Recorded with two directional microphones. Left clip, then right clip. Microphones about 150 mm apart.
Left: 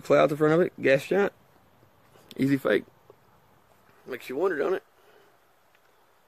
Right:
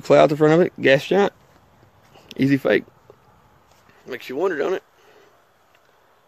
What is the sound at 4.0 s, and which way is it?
Speech, 25° right (ahead or behind).